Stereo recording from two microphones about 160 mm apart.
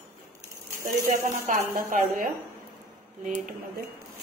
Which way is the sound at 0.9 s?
55° right (ahead or behind).